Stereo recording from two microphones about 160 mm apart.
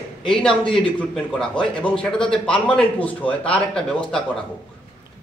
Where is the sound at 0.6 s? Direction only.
30° left (ahead or behind).